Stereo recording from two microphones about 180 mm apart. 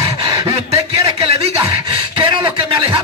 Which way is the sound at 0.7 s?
20° right (ahead or behind).